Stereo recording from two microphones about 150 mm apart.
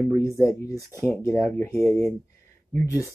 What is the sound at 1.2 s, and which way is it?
Speech, 15° left (ahead or behind).